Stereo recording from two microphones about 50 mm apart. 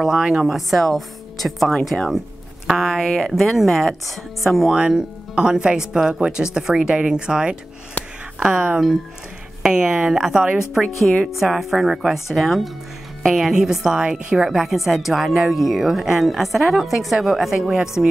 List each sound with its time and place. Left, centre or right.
0.0 s a woman's voice: centre
4.9 s speech: centre
11.3 s a woman's voice: centre
13.5 s a woman's voice: centre